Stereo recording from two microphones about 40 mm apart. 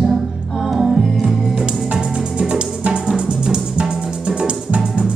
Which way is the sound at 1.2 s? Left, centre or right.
Centre.